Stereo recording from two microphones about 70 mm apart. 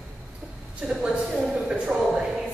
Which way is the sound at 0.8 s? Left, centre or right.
Centre.